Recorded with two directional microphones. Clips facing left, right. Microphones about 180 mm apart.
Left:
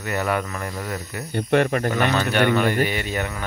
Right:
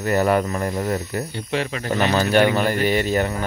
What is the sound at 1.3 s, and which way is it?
Speech, 55° left (ahead or behind).